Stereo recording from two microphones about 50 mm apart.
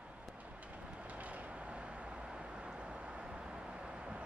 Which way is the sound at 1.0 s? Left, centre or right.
Right.